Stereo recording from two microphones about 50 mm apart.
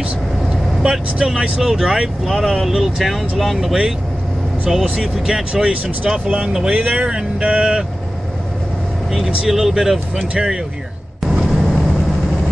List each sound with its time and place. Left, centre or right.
0.8 s speech: centre
3.5 s speech: centre
5.0 s speech: centre
5.5 s speech: right
6.7 s speech: right
7.1 s speech: centre
9.1 s speech: centre
11.4 s vehicle: centre